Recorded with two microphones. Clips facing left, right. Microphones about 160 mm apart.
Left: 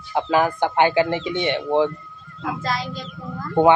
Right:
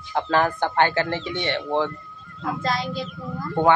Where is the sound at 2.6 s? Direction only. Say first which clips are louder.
Right 1 dB; centre (ahead or behind).